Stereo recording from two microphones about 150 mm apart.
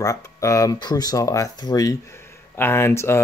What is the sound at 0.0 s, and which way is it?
Speech, 20° left (ahead or behind).